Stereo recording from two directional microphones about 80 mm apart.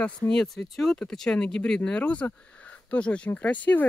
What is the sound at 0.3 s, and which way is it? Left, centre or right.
Speech, centre.